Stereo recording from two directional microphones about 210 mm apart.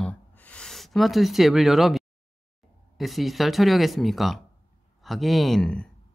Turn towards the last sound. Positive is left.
turn(degrees=5)  # may be behind; listen again after turning